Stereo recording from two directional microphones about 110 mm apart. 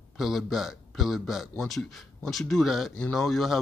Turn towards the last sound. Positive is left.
turn(degrees=0)  # may be behind; listen again after turning